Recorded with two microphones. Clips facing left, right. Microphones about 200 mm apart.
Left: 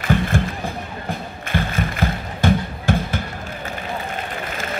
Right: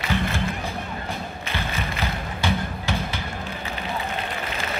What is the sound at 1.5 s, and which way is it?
Music, 50° left (ahead or behind).